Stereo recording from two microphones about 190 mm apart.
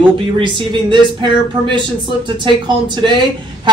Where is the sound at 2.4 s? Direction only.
25° right (ahead or behind).